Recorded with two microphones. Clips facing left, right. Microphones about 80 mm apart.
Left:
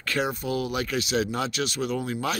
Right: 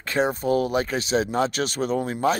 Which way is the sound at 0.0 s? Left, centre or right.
Right.